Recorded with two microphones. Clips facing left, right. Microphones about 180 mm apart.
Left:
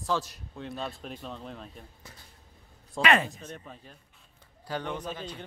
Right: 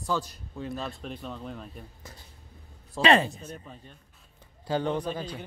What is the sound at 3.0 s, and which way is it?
Speech, 30° right (ahead or behind).